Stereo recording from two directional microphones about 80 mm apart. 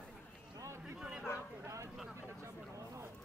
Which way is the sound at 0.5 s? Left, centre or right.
Right.